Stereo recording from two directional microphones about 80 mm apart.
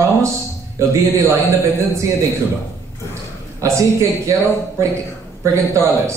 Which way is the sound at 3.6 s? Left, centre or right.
Right.